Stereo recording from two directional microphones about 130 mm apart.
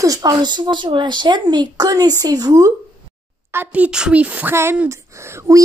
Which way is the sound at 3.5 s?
10° right (ahead or behind).